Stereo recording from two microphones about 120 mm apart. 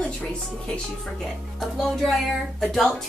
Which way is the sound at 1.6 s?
Centre (ahead or behind).